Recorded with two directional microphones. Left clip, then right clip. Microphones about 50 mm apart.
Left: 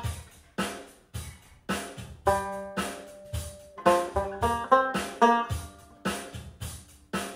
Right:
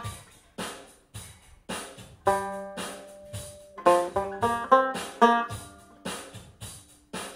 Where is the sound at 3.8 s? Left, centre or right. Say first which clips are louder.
Right 2 dB; centre.